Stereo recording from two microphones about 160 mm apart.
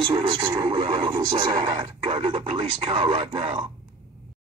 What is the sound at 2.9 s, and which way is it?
Speech, 35° right (ahead or behind).